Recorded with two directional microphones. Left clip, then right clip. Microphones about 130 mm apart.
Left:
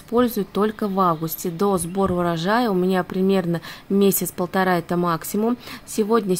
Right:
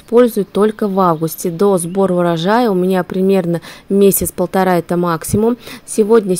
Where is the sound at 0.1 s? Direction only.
35° right (ahead or behind).